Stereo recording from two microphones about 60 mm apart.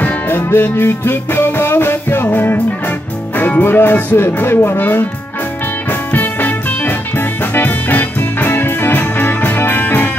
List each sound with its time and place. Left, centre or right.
0.0 s music: left
3.3 s speech: left
5.9 s music: left